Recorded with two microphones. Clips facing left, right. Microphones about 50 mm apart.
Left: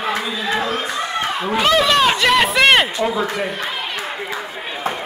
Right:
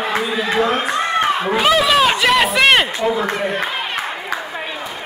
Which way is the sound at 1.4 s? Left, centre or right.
Centre.